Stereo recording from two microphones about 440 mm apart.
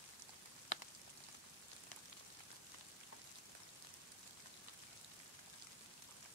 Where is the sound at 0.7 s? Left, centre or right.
Left.